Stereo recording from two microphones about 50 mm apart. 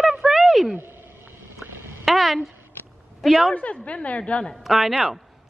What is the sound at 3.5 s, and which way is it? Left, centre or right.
A woman's voice, left.